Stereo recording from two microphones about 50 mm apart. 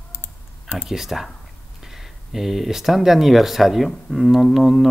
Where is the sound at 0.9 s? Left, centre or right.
Centre.